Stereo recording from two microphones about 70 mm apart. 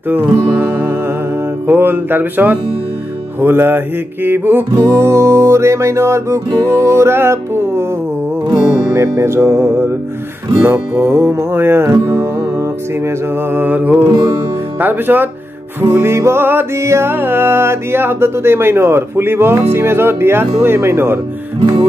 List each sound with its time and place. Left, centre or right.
0.1 s music: right
3.3 s speech: right
4.7 s music: right
8.8 s speech: right
13.6 s music: right
15.8 s speech: right
16.7 s music: right
17.1 s speech: right